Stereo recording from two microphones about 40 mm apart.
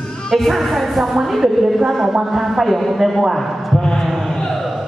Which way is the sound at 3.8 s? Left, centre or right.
Centre.